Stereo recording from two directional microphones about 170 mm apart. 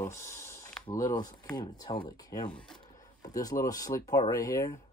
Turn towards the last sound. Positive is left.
turn(degrees=20)  # may be behind; listen again after turning